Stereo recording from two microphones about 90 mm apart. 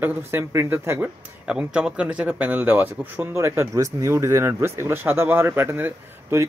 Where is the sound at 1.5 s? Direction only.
10° right (ahead or behind).